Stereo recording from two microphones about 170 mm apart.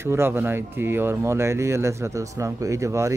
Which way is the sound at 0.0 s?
15° right (ahead or behind).